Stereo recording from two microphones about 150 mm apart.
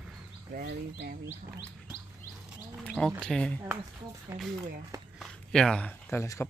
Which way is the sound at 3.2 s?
5° left (ahead or behind).